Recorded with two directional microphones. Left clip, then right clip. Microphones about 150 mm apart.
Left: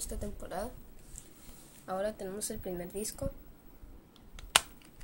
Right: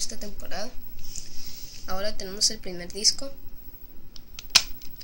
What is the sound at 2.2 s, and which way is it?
Speech, 55° left (ahead or behind).